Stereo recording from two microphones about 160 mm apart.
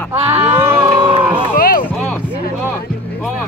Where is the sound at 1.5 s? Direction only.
60° left (ahead or behind).